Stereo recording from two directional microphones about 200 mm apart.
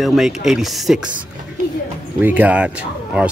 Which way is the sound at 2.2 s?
10° right (ahead or behind).